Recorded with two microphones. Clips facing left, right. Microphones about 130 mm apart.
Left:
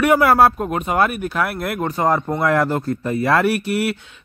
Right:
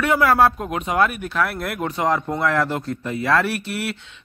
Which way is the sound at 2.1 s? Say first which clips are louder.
Left 2 dB; 25° left (ahead or behind).